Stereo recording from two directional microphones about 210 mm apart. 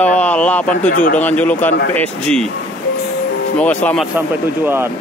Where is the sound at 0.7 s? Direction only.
40° left (ahead or behind).